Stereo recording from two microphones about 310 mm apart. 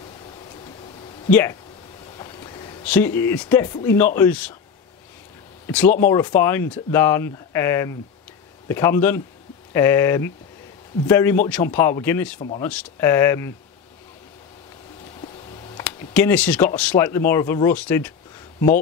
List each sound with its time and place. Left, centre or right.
1.3 s speech: centre
5.7 s speech: centre
15.8 s speech: centre